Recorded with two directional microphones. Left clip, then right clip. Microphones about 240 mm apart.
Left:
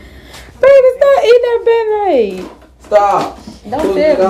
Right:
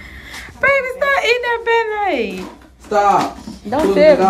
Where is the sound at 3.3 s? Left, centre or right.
Left.